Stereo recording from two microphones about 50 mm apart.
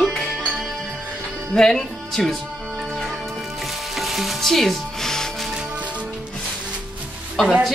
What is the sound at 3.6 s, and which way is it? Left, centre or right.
Music, centre.